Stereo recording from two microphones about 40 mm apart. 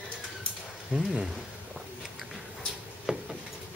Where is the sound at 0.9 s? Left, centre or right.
Centre.